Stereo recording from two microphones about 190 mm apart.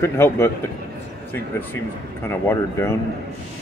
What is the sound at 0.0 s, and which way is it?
Speech, 15° left (ahead or behind).